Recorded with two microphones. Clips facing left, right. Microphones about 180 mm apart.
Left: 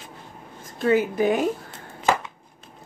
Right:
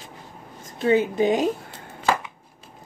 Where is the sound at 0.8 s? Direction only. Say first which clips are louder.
Right 1 dB; 25° right (ahead or behind).